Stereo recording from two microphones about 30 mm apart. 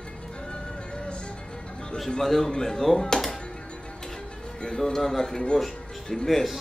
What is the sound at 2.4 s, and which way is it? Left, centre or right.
Speech, centre.